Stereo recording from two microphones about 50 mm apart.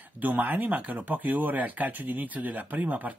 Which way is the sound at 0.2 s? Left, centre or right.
Right.